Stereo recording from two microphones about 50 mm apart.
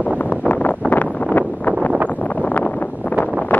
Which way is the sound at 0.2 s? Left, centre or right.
Left.